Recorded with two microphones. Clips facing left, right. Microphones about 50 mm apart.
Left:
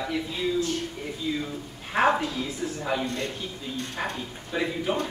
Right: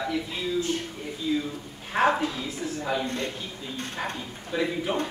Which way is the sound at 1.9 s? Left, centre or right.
Centre.